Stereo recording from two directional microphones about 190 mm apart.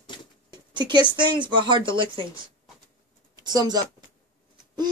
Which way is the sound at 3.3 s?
20° right (ahead or behind).